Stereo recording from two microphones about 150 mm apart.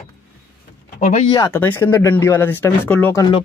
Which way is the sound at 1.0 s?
50° left (ahead or behind).